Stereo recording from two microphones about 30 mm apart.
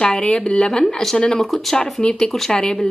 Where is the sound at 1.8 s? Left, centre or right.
Left.